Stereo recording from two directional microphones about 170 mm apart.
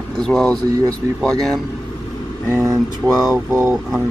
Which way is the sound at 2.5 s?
15° right (ahead or behind).